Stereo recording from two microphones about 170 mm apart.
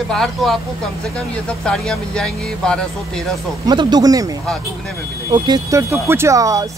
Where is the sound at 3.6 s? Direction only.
25° right (ahead or behind).